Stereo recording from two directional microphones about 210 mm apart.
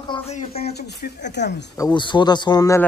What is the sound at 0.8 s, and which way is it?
Speech, 50° left (ahead or behind).